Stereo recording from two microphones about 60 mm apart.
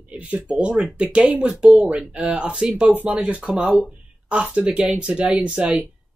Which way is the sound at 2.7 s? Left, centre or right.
Right.